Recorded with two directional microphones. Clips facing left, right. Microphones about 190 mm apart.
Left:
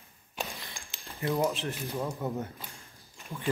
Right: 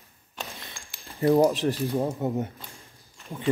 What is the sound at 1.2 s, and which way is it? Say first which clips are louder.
Speech: right 9 dB; 40° right (ahead or behind).